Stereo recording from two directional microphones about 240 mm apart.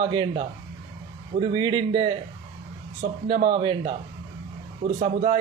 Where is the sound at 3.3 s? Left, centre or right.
Right.